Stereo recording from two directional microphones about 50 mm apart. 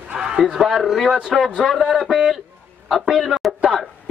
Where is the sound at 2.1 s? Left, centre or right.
Centre.